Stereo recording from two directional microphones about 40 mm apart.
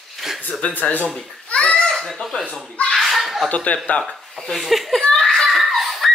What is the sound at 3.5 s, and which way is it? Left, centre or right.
Speech, left.